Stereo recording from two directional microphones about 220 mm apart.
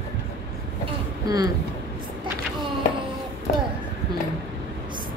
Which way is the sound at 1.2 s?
15° right (ahead or behind).